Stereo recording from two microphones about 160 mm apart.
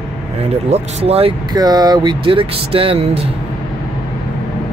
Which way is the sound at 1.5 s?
25° right (ahead or behind).